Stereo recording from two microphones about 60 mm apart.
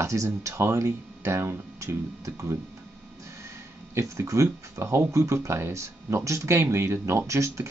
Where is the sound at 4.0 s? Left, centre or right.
Right.